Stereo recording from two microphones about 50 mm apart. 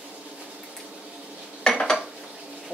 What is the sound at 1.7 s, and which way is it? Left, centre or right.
Dishes, centre.